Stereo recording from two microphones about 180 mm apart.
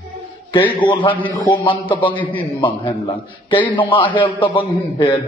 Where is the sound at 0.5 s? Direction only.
25° left (ahead or behind).